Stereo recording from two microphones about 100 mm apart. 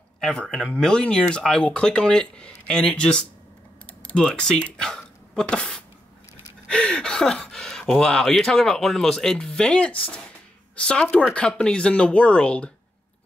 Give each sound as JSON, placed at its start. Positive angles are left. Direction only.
{"t": 0.2, "sound": "speech", "side_deg": 5}